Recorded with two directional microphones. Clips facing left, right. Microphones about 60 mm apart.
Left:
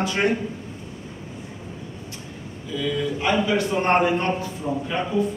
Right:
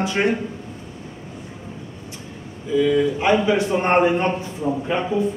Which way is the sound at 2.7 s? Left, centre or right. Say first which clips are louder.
Right 8 dB; right.